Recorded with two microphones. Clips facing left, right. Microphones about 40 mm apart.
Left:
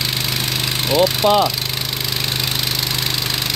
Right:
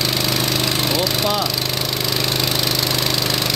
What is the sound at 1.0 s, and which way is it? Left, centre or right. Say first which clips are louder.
Speech: left 6 dB; left.